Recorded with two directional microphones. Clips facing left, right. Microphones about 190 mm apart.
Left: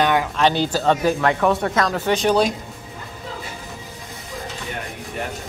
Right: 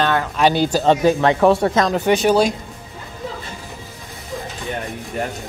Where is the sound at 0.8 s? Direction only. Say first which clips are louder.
Right 4 dB; 25° right (ahead or behind); by 2.5 s 5° right (ahead or behind).